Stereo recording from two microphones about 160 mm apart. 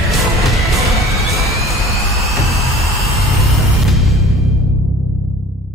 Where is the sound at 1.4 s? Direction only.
Centre (ahead or behind).